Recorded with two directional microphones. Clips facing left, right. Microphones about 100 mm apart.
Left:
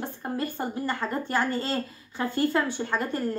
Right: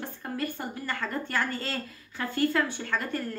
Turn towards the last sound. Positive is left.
turn(degrees=25)  # may be behind; listen again after turning